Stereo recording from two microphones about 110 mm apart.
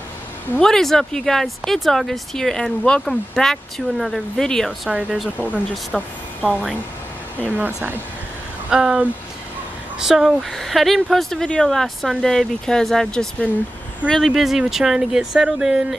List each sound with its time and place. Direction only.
0.6 s speech: 5° left (ahead or behind)
4.8 s speech: 5° right (ahead or behind)
7.5 s speech: 15° right (ahead or behind)